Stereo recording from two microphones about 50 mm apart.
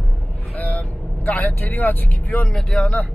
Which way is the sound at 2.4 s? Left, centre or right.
Centre.